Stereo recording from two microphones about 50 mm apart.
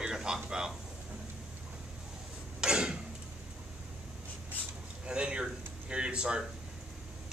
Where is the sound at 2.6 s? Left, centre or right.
Centre.